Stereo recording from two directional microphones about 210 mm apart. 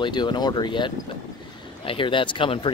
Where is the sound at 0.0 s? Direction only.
20° left (ahead or behind).